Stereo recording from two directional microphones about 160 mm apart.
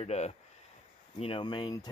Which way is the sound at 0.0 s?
45° left (ahead or behind).